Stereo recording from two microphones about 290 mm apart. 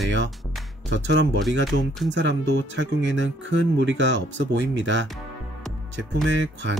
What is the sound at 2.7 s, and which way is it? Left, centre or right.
Speech, right.